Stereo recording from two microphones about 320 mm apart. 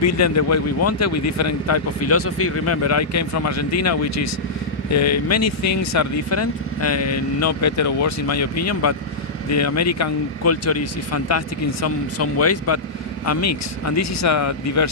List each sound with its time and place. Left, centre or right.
0.0 s speech: left